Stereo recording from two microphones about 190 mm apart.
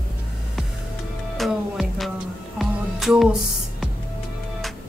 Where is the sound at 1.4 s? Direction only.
Centre (ahead or behind).